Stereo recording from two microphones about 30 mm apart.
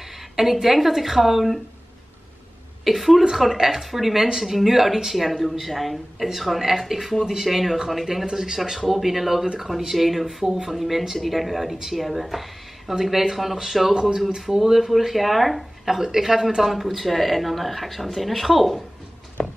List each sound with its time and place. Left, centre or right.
0.4 s speech: centre
2.8 s a woman's voice: centre
8.3 s speech: centre
8.6 s speech: centre
10.2 s speech: centre
15.9 s speech: centre
16.6 s speech: centre
19.4 s a sound: left